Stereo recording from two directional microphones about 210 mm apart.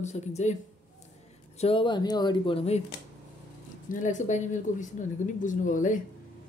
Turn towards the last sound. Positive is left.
turn(degrees=35)  # may be behind; listen again after turning